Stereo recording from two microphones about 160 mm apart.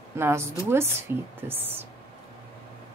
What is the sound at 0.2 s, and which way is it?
A woman's voice, 15° right (ahead or behind).